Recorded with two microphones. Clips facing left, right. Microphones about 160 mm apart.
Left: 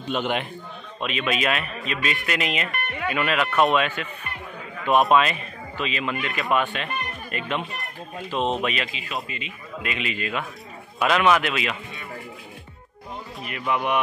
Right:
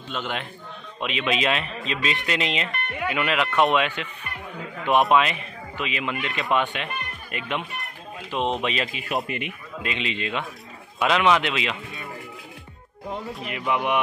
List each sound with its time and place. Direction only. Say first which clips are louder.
0.1 s a man's voice: left 5 dB; 15° left (ahead or behind)
1.0 s speech: even; 20° right (ahead or behind)
5.1 s speech: left 1 dB; 15° right (ahead or behind)
8.9 s speech: right 5 dB; 55° right (ahead or behind)
9.8 s speech: even; 30° right (ahead or behind)
13.5 s speech: even; 20° right (ahead or behind)